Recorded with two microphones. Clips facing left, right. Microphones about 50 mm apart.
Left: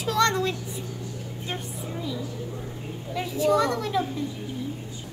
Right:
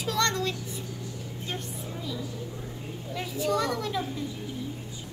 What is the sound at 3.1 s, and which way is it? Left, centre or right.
Speech, centre.